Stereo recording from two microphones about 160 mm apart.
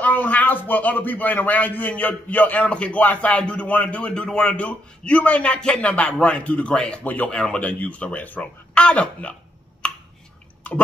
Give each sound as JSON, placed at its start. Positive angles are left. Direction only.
{"t": 0.0, "sound": "a man's voice", "side_deg": 10}